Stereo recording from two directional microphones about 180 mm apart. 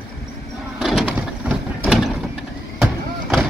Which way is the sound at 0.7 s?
5° right (ahead or behind).